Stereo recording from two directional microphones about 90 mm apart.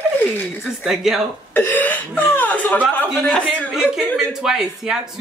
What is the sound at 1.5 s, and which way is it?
Speech, 20° left (ahead or behind).